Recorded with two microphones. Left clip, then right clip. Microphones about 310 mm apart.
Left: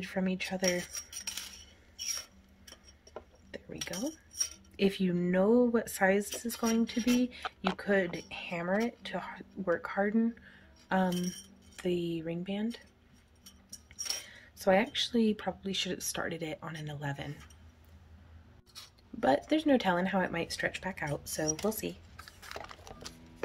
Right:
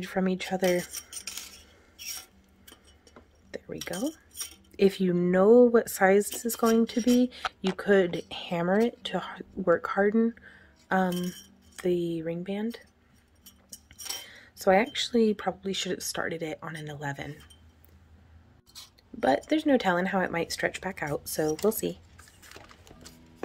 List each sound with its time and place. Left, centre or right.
0.0 s speech: centre
3.5 s speech: centre
13.9 s a sound: centre
14.2 s speech: centre
19.1 s speech: centre
22.1 s music: left